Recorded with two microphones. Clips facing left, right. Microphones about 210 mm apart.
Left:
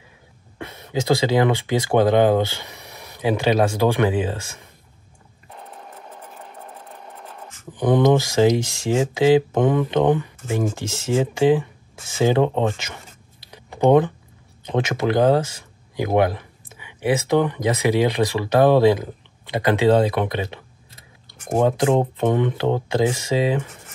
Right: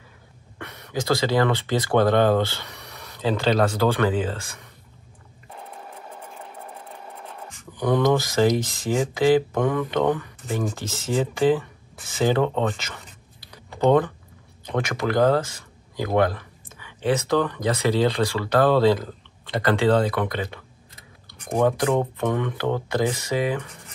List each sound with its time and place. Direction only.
0.6 s speech: 25° left (ahead or behind)
5.5 s sewing machine: centre (ahead or behind)
6.8 s a sound: centre (ahead or behind)
7.7 s speech: 20° left (ahead or behind)
13.5 s a sound: 15° left (ahead or behind)
14.7 s speech: 20° left (ahead or behind)